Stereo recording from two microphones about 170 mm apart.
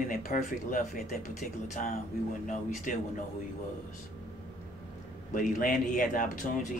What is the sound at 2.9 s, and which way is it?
Speech, 50° left (ahead or behind).